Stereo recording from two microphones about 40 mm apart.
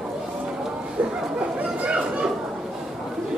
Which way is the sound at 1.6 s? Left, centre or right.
Right.